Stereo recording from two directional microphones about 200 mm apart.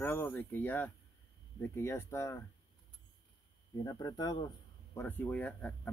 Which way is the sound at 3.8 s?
20° left (ahead or behind).